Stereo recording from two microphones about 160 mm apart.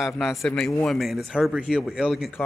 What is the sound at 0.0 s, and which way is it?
Speech, centre (ahead or behind).